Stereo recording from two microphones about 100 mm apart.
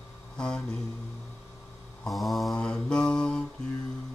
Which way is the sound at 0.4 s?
10° left (ahead or behind).